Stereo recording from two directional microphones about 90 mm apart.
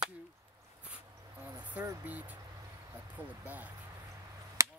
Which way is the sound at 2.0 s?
20° right (ahead or behind).